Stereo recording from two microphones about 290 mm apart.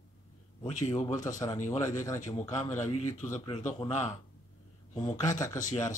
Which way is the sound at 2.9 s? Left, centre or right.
Left.